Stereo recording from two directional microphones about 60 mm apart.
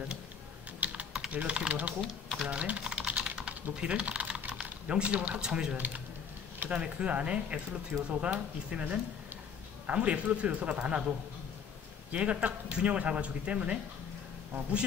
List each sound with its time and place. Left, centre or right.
0.7 s typing: right
1.3 s speech: right
2.0 s speech: centre
2.4 s typing: right
3.7 s speech: centre